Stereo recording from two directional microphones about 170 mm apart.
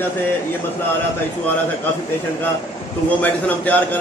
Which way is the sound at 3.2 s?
10° left (ahead or behind).